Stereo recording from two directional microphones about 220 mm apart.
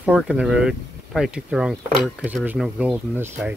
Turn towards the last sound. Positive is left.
turn(degrees=-10)  # may be behind; listen again after turning